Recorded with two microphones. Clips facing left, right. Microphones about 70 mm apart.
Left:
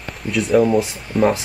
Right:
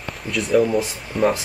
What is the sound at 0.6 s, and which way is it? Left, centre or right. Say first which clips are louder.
Speech: left 3 dB; left.